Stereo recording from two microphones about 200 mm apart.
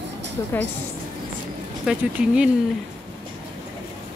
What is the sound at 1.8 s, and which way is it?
Speech, 5° right (ahead or behind).